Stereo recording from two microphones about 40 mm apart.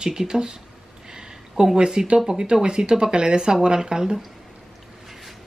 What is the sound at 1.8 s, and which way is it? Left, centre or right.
Speech, right.